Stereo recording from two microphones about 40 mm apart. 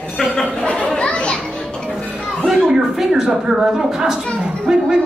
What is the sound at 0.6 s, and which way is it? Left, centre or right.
Chatter, left.